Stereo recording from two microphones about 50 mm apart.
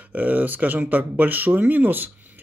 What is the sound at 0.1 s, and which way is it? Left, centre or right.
Speech, right.